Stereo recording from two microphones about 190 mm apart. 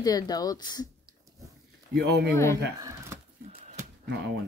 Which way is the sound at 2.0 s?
60° right (ahead or behind).